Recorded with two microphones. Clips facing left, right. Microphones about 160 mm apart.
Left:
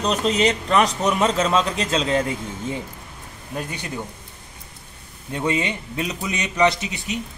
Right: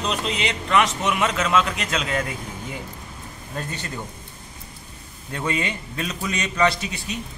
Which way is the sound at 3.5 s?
15° left (ahead or behind).